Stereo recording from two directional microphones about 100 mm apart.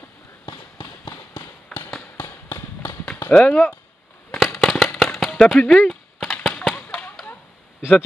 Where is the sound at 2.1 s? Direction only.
20° left (ahead or behind).